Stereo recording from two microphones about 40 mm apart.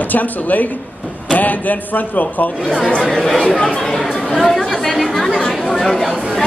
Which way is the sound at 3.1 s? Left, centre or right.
Centre.